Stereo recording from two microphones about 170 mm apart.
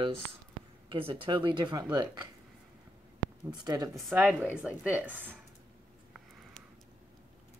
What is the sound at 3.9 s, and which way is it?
Speech, centre (ahead or behind).